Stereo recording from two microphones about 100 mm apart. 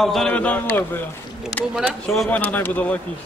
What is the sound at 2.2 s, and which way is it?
Speech, 15° left (ahead or behind).